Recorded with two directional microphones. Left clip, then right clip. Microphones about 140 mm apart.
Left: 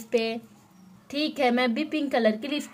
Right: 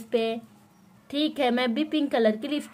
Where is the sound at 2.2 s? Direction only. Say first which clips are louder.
Even; centre (ahead or behind).